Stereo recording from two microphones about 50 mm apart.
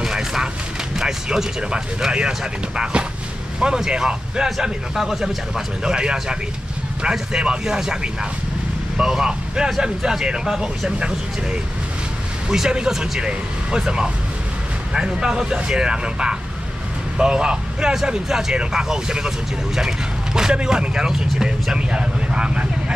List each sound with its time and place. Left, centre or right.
0.0 s a sound: centre
0.9 s speech: centre
5.9 s speech: centre
12.4 s speech: centre